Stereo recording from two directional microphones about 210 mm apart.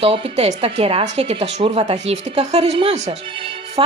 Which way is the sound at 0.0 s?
30° right (ahead or behind).